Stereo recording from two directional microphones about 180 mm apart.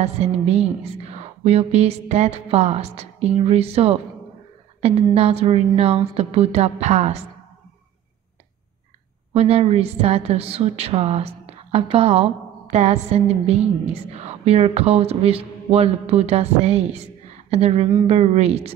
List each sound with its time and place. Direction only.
0.0 s a woman's voice: 35° right (ahead or behind)
9.3 s a woman's voice: 35° right (ahead or behind)